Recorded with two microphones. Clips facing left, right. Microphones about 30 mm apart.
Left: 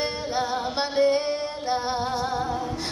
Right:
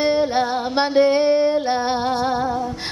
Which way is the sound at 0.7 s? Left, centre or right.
Right.